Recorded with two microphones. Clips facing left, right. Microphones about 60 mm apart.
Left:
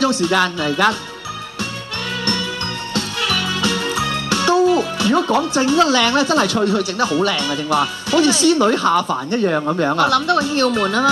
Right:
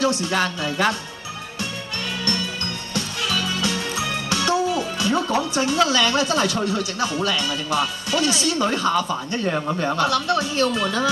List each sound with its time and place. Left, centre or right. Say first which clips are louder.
0.2 s speech: left 6 dB; left
2.9 s music: left 4 dB; left
9.1 s speech: left 6 dB; left